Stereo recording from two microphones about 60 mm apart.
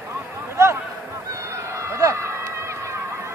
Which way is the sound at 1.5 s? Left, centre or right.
Right.